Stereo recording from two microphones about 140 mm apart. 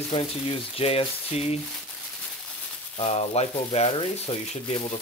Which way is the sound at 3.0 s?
50° left (ahead or behind).